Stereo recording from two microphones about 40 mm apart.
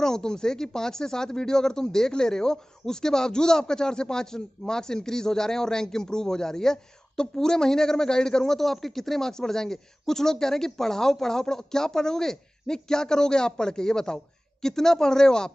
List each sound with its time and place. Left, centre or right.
0.0 s speech: centre